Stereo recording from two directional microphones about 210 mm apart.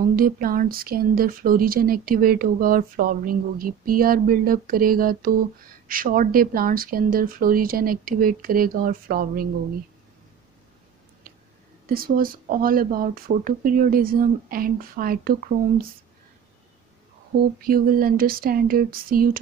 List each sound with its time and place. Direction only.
0.0 s speech: 45° right (ahead or behind)
11.9 s speech: 45° right (ahead or behind)
17.6 s speech: 45° right (ahead or behind)